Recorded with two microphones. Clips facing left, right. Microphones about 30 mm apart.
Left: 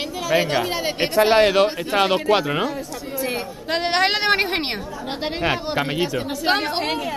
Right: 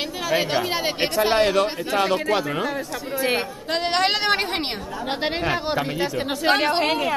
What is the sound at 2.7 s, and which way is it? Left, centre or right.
Speech, right.